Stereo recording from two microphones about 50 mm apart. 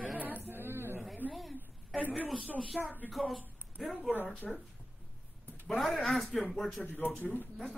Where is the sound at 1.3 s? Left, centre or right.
Centre.